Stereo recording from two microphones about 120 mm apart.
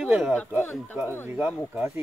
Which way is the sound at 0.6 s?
15° left (ahead or behind).